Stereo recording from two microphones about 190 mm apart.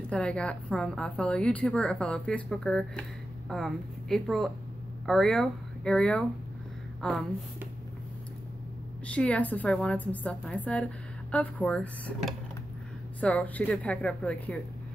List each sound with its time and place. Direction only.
0.1 s a woman's voice: 5° left (ahead or behind)
9.0 s a woman's voice: 5° left (ahead or behind)